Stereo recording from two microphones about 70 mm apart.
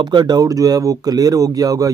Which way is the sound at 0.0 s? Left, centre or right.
Right.